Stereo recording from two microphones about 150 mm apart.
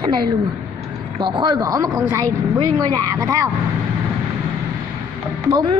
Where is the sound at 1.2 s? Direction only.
35° right (ahead or behind).